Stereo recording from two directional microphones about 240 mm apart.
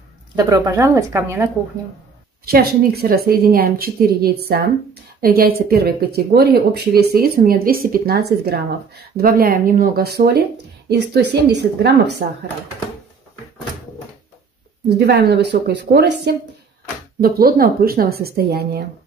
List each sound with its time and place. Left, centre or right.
0.4 s speech: centre
2.4 s a woman's voice: right
15.0 s a woman's voice: right